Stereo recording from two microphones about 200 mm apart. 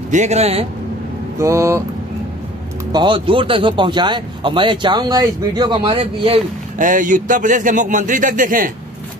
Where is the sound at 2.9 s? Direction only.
25° right (ahead or behind).